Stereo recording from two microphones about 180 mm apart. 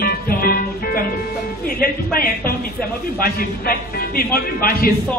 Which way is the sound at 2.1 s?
55° left (ahead or behind).